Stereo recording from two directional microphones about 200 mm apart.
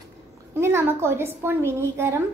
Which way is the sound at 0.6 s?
10° right (ahead or behind).